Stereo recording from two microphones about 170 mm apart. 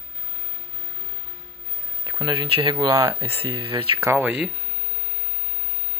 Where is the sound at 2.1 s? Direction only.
30° right (ahead or behind).